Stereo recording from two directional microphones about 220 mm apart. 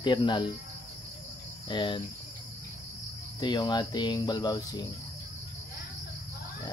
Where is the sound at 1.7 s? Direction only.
20° left (ahead or behind).